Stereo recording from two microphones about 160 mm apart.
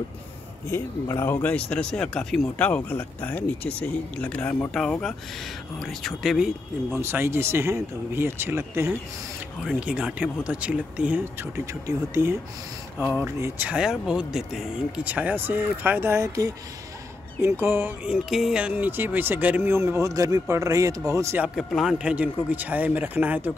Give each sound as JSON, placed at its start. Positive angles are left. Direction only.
{"t": 0.7, "sound": "speech", "side_deg": 15}
{"t": 7.0, "sound": "speech", "side_deg": -15}
{"t": 11.5, "sound": "speech", "side_deg": -20}
{"t": 21.5, "sound": "speech", "side_deg": 0}